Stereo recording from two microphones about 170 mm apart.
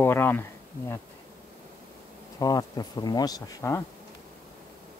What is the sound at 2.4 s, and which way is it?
Speech, 20° left (ahead or behind).